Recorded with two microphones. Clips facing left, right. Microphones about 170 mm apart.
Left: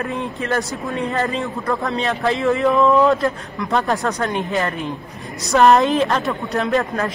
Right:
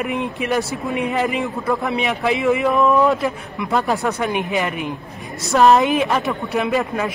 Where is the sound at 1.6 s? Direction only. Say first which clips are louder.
Right 1 dB; 5° right (ahead or behind).